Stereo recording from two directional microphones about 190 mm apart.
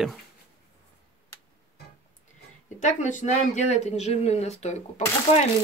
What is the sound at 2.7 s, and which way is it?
Speech, 40° left (ahead or behind).